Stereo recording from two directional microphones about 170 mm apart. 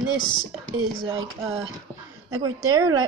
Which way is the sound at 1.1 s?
25° right (ahead or behind).